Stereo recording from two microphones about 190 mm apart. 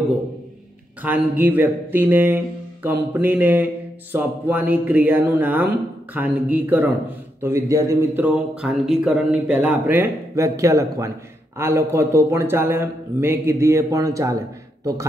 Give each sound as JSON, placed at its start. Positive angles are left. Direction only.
{"t": 1.0, "sound": "speech", "side_deg": -10}